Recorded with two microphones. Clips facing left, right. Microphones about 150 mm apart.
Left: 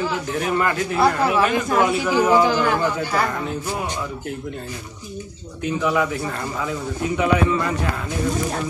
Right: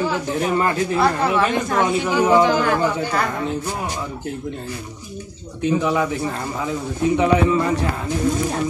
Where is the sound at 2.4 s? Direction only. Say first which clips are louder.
Right 1 dB; 5° left (ahead or behind).